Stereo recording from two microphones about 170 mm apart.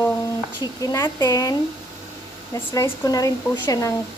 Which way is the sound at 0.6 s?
20° left (ahead or behind).